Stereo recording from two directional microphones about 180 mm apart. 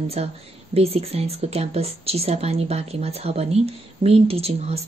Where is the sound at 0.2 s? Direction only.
35° right (ahead or behind).